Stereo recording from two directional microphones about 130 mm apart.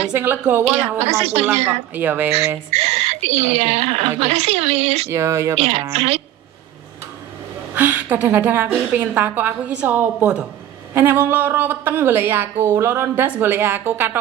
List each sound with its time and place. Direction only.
0.2 s a woman's voice: 15° right (ahead or behind)
0.9 s a woman's voice: 55° right (ahead or behind)
2.0 s a woman's voice: 15° right (ahead or behind)
2.7 s a woman's voice: 55° right (ahead or behind)
5.1 s speech: 20° right (ahead or behind)
5.5 s speech: 50° right (ahead or behind)
7.7 s a woman's voice: 15° right (ahead or behind)